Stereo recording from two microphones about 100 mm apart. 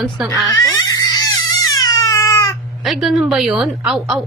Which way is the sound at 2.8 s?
Centre (ahead or behind).